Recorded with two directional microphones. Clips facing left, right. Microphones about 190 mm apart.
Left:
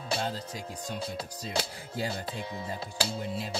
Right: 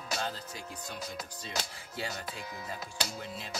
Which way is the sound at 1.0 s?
30° left (ahead or behind).